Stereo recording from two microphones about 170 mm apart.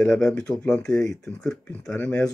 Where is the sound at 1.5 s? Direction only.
5° left (ahead or behind).